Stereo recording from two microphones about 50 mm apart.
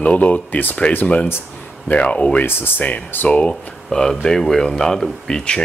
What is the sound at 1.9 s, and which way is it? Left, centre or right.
Speech, left.